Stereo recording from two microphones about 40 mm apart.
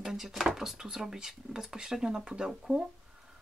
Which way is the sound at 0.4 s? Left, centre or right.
Centre.